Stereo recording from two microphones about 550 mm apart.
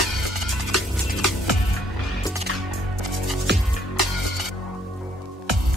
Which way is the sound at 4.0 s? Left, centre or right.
Left.